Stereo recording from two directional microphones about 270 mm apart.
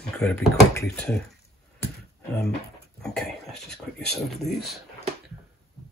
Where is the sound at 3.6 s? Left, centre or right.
Centre.